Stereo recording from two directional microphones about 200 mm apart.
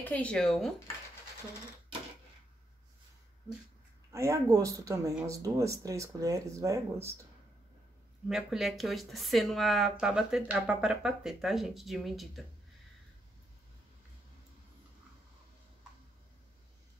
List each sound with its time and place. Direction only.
0.0 s speech: 5° left (ahead or behind)
4.1 s speech: 15° right (ahead or behind)
8.3 s speech: centre (ahead or behind)